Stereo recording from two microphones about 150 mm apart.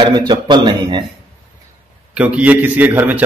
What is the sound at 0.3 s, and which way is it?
Speech, 30° right (ahead or behind).